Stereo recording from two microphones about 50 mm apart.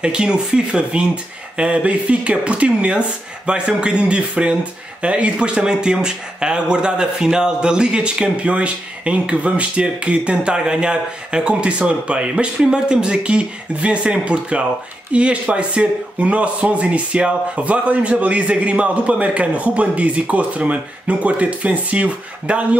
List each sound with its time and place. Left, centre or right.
0.0 s speech: centre